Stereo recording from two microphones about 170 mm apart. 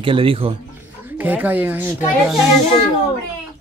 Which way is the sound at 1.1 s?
10° right (ahead or behind).